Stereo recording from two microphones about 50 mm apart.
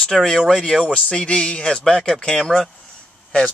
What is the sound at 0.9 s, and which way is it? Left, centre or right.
Speech, left.